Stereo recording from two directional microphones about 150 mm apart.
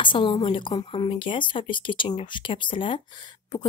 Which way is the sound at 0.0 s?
35° left (ahead or behind).